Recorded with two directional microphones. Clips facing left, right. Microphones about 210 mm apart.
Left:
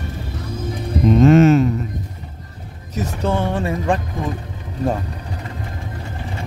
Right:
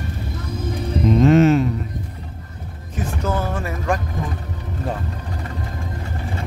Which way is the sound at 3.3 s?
30° left (ahead or behind).